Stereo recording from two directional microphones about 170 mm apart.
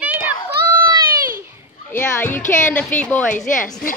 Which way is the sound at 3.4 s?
50° left (ahead or behind).